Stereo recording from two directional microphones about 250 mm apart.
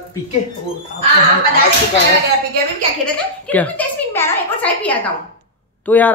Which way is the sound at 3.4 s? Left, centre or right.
Centre.